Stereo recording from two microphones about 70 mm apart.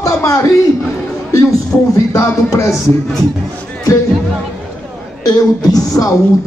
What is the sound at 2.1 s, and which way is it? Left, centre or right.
Speech, left.